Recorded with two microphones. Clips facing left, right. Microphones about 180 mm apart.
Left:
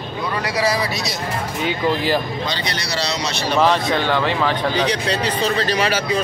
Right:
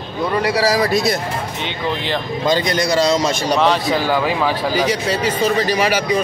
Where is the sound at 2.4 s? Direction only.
45° right (ahead or behind).